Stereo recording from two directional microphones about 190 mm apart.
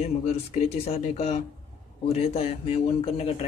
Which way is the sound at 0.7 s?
30° left (ahead or behind).